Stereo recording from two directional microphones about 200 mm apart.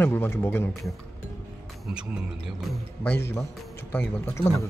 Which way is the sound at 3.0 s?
10° left (ahead or behind).